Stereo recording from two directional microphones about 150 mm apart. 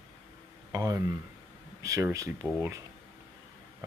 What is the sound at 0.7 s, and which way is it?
Speech, 20° right (ahead or behind).